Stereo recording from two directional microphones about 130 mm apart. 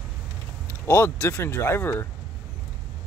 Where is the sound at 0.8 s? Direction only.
20° left (ahead or behind).